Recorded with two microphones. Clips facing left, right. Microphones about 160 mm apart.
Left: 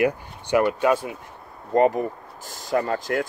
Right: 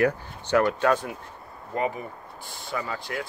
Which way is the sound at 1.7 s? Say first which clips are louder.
Left 9 dB; 40° left (ahead or behind).